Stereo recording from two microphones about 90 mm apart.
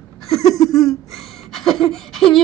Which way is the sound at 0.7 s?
5° left (ahead or behind).